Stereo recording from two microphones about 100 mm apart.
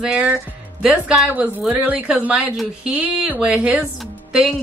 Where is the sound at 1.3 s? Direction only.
15° right (ahead or behind).